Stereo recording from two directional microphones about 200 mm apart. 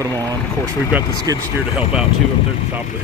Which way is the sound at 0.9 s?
15° right (ahead or behind).